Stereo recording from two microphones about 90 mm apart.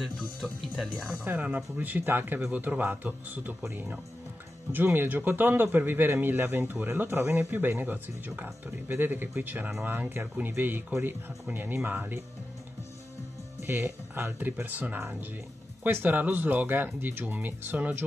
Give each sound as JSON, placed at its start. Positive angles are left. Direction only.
{"t": 0.8, "sound": "speech", "side_deg": 10}
{"t": 1.2, "sound": "speech", "side_deg": -20}
{"t": 13.6, "sound": "speech", "side_deg": -25}